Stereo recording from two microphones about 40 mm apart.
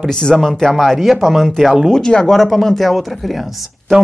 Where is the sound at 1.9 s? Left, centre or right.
Centre.